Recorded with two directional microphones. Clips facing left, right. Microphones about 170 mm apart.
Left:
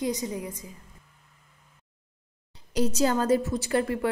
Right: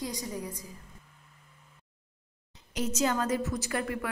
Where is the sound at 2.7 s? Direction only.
35° left (ahead or behind).